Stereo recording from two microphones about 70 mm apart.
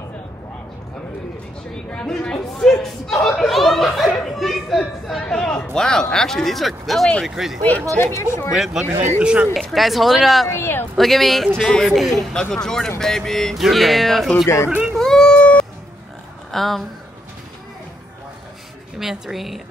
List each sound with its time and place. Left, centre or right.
1.9 s speech: centre
4.1 s chatter: centre
5.2 s a man's voice: centre
8.0 s speech: left
8.5 s speech: centre
9.2 s speech: centre
9.5 s speech: centre
10.5 s speech: left
11.0 s a man's voice: centre
14.4 s speech: left
15.0 s a sound: centre
16.5 s speech: centre
18.9 s speech: centre